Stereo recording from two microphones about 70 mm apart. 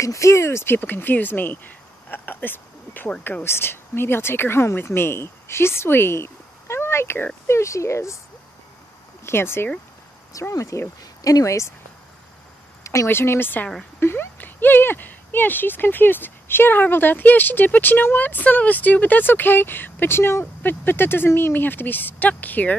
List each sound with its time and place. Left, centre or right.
0.0 s speech: left
0.7 s speech: left
3.4 s speech: left
9.2 s speech: left
10.5 s speech: left
12.8 s speech: left